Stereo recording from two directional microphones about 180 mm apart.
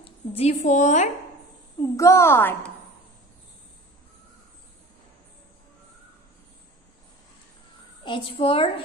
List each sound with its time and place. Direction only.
0.0 s a woman's voice: 35° left (ahead or behind)
1.8 s a woman's voice: 15° left (ahead or behind)
8.3 s a woman's voice: 30° left (ahead or behind)